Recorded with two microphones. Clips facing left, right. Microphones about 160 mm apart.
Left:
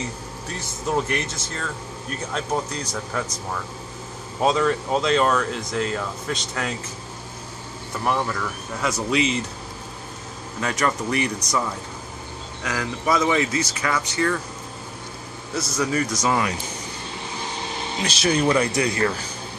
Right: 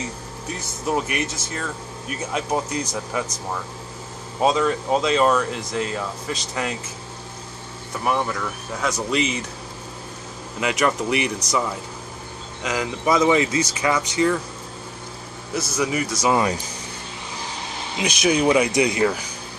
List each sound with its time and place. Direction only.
0.8 s speech: 10° right (ahead or behind)
4.4 s speech: centre (ahead or behind)
8.0 s speech: 5° right (ahead or behind)
10.6 s speech: 15° right (ahead or behind)
12.6 s speech: 15° right (ahead or behind)
15.5 s speech: 10° right (ahead or behind)
18.0 s speech: 15° right (ahead or behind)